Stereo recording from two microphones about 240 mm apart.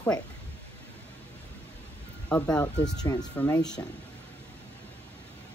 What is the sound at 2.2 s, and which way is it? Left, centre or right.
Speech, centre.